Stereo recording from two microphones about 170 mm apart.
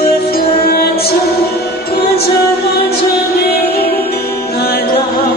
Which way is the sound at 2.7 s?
65° left (ahead or behind).